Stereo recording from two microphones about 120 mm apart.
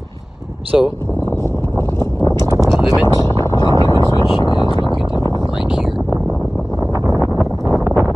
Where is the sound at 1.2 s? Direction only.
20° left (ahead or behind).